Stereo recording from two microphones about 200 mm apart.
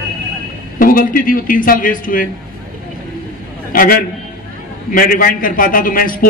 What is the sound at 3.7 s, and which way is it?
A man's voice, 45° left (ahead or behind).